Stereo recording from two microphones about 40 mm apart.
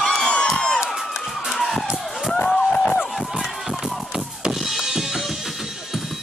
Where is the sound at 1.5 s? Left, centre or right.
Centre.